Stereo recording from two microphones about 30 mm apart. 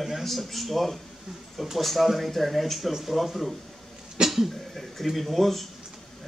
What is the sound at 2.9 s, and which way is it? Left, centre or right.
Speech, centre.